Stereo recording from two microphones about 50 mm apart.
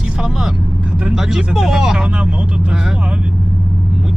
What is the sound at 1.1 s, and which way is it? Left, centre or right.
Speech, centre.